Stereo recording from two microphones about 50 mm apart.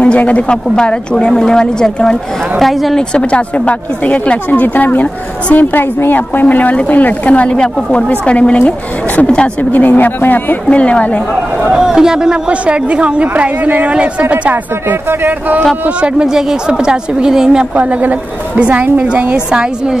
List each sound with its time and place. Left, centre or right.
0.0 s speech: left
2.6 s a woman's voice: centre
3.0 s speech: centre; by 5.9 s left
6.4 s speech: left
9.6 s speech: left
10.7 s speech: left
11.7 s a woman's voice: centre
14.3 s speech: right
16.0 s a woman's voice: centre
17.7 s a woman's voice: right